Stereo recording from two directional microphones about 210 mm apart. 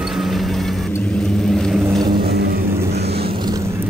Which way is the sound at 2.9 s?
50° right (ahead or behind).